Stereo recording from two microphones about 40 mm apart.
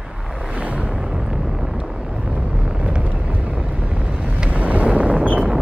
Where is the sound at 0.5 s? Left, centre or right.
Right.